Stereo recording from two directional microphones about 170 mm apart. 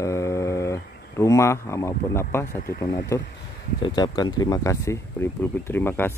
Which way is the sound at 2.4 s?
55° left (ahead or behind).